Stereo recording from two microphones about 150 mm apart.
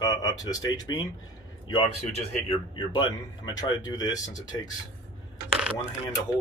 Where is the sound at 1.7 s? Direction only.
40° left (ahead or behind).